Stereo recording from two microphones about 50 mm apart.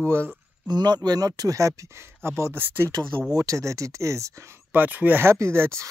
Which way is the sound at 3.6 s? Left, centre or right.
Right.